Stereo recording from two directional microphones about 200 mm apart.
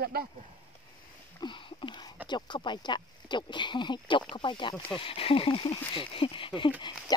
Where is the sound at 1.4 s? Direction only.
25° left (ahead or behind).